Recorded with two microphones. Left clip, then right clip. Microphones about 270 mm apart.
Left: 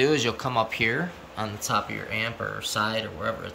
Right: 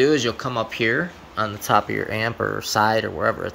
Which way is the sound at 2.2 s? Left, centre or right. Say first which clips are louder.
Right 6 dB; right.